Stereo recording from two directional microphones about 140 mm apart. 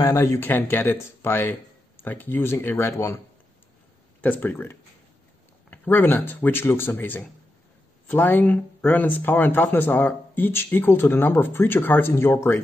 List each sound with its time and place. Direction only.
0.0 s speech: 20° left (ahead or behind)
4.2 s speech: 10° left (ahead or behind)